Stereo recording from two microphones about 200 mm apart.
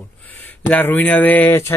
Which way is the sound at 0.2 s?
10° left (ahead or behind).